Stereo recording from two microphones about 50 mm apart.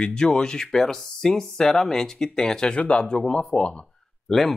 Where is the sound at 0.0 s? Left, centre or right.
Centre.